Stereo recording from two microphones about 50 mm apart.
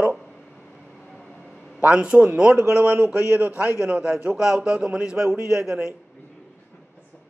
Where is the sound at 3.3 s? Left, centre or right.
Right; by 5.9 s centre.